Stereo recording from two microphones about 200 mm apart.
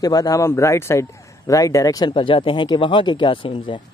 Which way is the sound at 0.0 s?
20° left (ahead or behind).